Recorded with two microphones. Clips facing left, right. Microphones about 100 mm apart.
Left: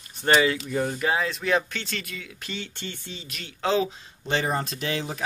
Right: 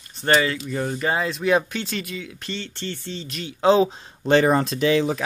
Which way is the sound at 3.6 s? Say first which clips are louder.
Right 7 dB; 25° right (ahead or behind).